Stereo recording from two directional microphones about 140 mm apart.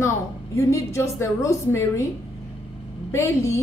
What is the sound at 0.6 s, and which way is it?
A woman's voice, 20° left (ahead or behind).